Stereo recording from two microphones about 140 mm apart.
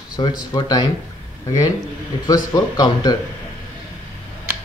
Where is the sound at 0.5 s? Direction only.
30° left (ahead or behind).